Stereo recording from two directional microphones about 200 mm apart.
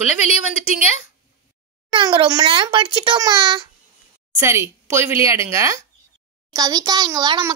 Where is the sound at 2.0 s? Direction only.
25° right (ahead or behind).